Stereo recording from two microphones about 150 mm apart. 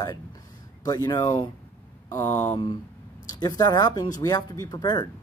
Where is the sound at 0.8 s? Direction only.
25° left (ahead or behind).